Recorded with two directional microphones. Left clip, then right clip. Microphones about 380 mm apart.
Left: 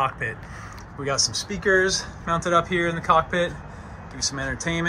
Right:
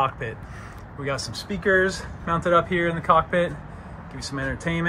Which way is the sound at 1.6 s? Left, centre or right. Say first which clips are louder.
Even; centre.